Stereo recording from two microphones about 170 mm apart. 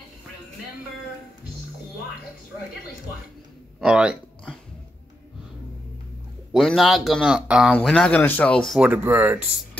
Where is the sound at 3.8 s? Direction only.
5° right (ahead or behind).